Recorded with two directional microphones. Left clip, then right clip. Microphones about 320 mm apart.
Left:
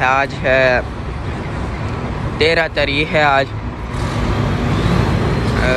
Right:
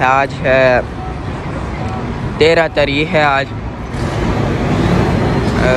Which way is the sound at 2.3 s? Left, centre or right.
Centre.